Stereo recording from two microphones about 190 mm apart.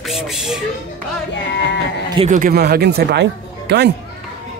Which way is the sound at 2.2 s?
40° right (ahead or behind).